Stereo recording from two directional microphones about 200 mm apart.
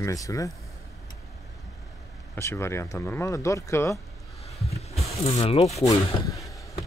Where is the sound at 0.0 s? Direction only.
15° left (ahead or behind).